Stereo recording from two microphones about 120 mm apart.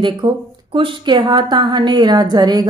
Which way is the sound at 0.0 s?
45° right (ahead or behind).